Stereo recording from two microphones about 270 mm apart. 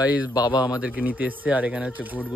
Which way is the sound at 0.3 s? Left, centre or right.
Centre.